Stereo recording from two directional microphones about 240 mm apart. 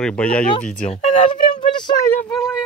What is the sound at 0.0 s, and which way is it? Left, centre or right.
Speech, centre.